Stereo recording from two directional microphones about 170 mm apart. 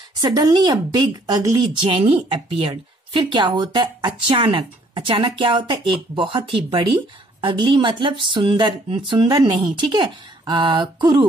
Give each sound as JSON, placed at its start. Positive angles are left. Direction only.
{"t": 0.2, "sound": "a woman's voice", "side_deg": -25}